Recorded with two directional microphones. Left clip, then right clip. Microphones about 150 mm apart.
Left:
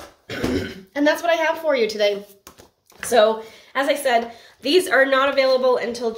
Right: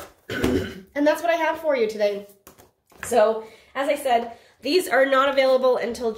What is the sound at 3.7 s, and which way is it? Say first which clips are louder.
Speech: left 2 dB; 30° left (ahead or behind).